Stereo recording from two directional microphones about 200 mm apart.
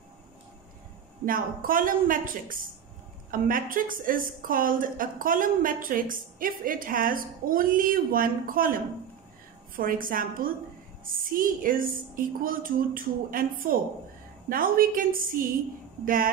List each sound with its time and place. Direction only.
1.2 s a woman's voice: 45° right (ahead or behind)